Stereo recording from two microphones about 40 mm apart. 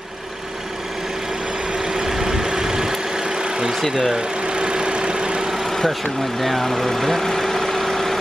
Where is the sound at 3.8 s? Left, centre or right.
Centre.